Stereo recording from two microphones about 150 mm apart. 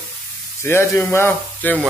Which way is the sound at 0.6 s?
15° left (ahead or behind).